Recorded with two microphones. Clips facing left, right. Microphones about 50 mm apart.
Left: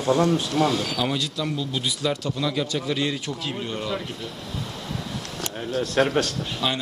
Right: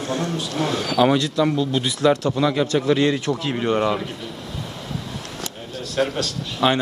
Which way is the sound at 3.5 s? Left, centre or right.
Right.